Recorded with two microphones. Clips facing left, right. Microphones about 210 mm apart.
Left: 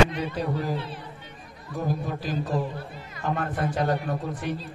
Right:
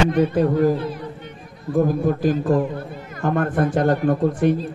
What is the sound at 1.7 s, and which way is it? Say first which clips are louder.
Speech: right 11 dB; 50° right (ahead or behind).